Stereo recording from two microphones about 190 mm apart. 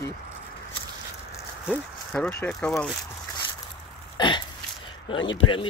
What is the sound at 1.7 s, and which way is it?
Speech, 5° left (ahead or behind).